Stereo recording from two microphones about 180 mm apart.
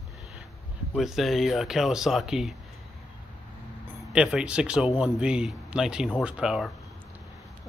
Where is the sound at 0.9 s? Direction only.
Centre (ahead or behind).